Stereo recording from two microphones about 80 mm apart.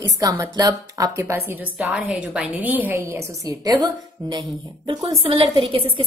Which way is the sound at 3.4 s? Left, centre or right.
Right.